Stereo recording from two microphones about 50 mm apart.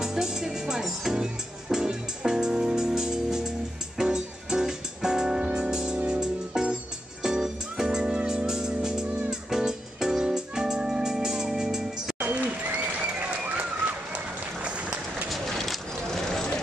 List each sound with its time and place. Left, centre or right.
0.0 s music: centre
13.6 s run: right
15.2 s a sound: centre